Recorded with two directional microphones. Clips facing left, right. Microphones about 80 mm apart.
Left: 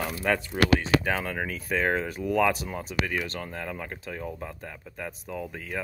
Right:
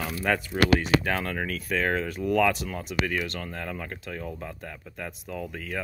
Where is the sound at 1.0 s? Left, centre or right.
Centre.